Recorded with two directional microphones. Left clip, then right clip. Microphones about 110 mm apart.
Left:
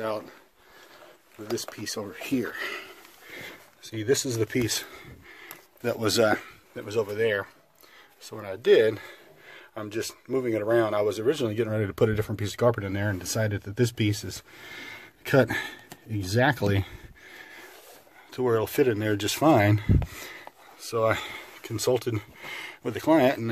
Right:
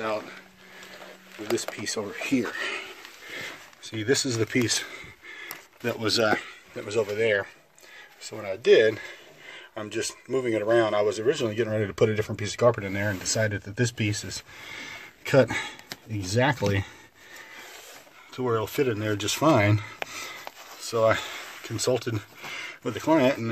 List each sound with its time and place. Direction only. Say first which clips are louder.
1.9 s speech: right 3 dB; 5° right (ahead or behind); by 5.0 s 15° left (ahead or behind)
5.4 s a sound: even; 15° left (ahead or behind)
6.0 s speech: left 1 dB; 90° left
6.7 s speech: right 1 dB; 10° left (ahead or behind)
8.2 s speech: right 3 dB; 25° left (ahead or behind); by 16.9 s 45° left (ahead or behind)
18.3 s speech: left 2 dB; 70° left (ahead or behind)
19.1 s speech: even; 40° left (ahead or behind)
21.6 s speech: left 1 dB; 45° left (ahead or behind)